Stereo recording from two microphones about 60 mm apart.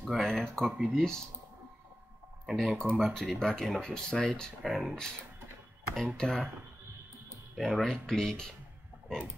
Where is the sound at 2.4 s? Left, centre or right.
Centre.